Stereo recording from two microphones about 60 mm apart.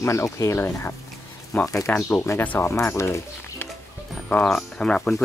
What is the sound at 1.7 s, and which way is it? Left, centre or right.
Speech, left.